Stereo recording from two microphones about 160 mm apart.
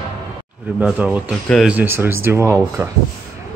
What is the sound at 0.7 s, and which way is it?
Speech, 5° right (ahead or behind).